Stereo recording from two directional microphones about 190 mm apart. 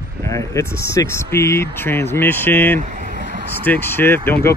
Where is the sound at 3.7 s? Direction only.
10° left (ahead or behind).